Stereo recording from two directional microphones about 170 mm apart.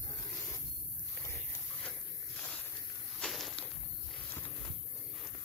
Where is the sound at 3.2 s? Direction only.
Centre (ahead or behind).